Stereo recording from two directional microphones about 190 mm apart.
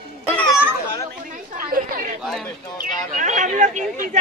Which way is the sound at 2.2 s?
Centre (ahead or behind).